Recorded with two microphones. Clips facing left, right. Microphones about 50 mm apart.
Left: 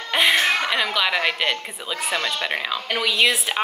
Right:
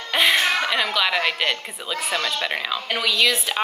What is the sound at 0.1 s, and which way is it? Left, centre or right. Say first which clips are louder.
A woman's voice: even; centre.